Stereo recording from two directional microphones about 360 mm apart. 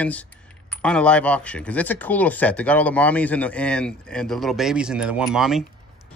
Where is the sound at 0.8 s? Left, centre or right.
Centre.